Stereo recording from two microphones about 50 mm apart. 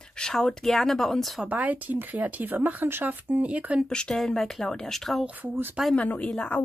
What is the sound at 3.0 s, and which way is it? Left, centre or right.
Speech, right.